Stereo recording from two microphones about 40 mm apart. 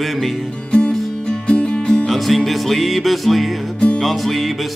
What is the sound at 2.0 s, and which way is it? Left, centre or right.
Music, centre.